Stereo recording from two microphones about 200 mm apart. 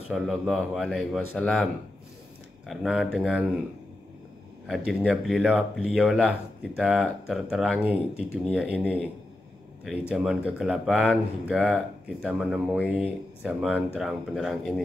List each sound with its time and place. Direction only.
0.1 s speech: centre (ahead or behind)
4.6 s speech: centre (ahead or behind)
8.1 s speech: 10° left (ahead or behind)
8.5 s speech: 5° right (ahead or behind)